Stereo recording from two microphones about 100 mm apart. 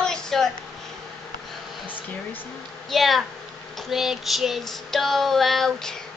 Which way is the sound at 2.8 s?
Centre (ahead or behind).